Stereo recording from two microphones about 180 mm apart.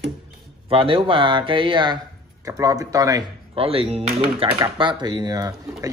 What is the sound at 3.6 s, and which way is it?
Speech, 30° right (ahead or behind).